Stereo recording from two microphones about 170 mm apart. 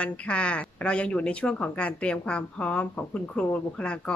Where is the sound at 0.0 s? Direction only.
5° left (ahead or behind).